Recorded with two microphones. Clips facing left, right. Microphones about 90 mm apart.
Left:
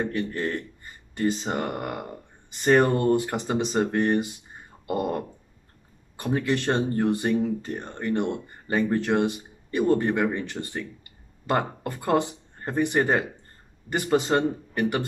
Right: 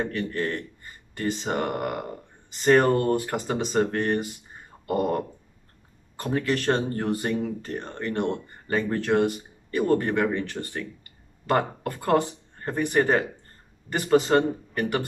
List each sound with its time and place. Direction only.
0.0 s speech: 20° left (ahead or behind)
6.1 s speech: 20° left (ahead or behind)